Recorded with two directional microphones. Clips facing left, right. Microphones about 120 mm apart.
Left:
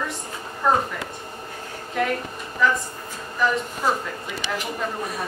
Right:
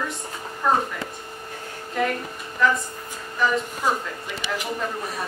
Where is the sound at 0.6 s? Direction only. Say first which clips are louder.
Left 1 dB; centre (ahead or behind).